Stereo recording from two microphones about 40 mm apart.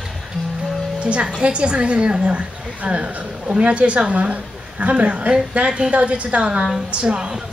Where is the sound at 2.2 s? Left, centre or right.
Right.